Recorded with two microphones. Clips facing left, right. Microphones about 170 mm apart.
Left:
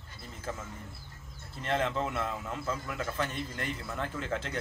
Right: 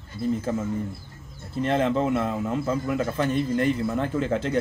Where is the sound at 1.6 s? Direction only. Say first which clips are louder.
Right 8 dB; 15° right (ahead or behind).